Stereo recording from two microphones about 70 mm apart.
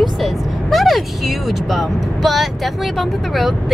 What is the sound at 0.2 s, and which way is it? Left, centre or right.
Speech, centre.